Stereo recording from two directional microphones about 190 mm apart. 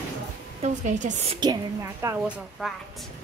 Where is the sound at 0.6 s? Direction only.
40° right (ahead or behind).